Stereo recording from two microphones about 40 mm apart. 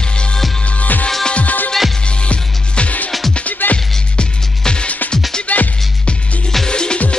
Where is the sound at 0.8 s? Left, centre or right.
Left.